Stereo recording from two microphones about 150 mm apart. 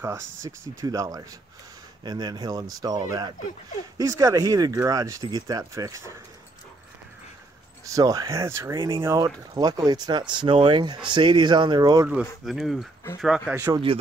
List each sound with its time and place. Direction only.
0.0 s speech: 20° right (ahead or behind)
7.9 s speech: 25° right (ahead or behind)
8.7 s speech: 30° right (ahead or behind)
12.4 s speech: centre (ahead or behind)
13.5 s speech: 15° right (ahead or behind)